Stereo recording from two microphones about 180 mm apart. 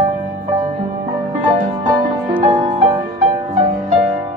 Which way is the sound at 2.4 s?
35° right (ahead or behind).